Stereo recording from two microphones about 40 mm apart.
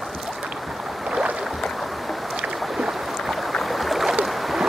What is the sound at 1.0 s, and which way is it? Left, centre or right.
Boat, right.